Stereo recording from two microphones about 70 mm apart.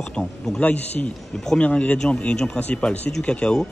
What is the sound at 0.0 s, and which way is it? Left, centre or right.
Speech, centre.